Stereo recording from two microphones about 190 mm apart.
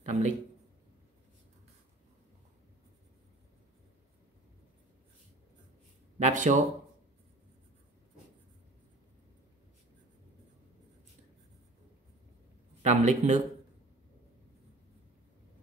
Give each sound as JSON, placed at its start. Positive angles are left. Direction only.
{"t": 0.0, "sound": "a sound", "side_deg": -40}
{"t": 6.1, "sound": "a man's voice", "side_deg": -40}
{"t": 12.8, "sound": "a man's voice", "side_deg": -40}